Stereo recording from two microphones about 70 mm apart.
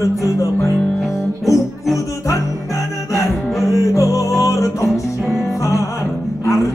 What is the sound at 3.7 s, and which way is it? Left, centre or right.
Music, left.